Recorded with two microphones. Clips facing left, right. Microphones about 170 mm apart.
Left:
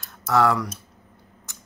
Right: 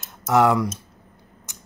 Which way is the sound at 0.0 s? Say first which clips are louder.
Right 2 dB; 20° right (ahead or behind).